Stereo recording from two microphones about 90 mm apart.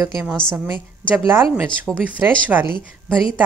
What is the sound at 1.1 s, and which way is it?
Speech, 25° right (ahead or behind).